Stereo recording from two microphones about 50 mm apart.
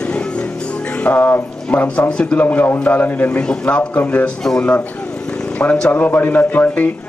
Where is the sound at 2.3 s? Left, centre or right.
Left.